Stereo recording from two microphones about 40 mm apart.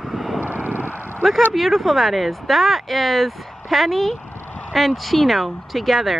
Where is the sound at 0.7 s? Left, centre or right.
Right.